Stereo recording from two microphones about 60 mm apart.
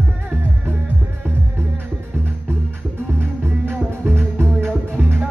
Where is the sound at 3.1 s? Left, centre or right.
Right.